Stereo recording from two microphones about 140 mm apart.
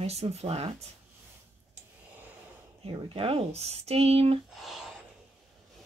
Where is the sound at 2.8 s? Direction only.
40° right (ahead or behind).